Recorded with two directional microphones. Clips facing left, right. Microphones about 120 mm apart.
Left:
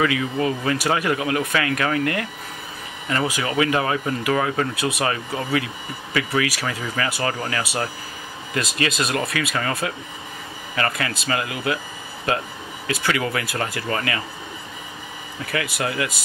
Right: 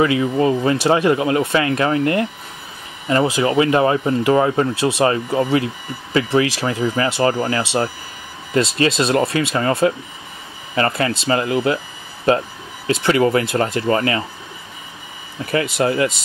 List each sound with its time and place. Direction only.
0.0 s speech: 30° right (ahead or behind)
12.8 s speech: 30° right (ahead or behind)
15.4 s speech: 25° right (ahead or behind)